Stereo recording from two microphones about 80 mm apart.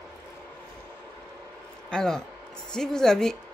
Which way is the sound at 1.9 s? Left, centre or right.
Centre.